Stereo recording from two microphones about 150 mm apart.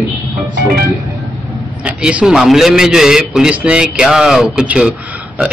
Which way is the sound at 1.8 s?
5° right (ahead or behind).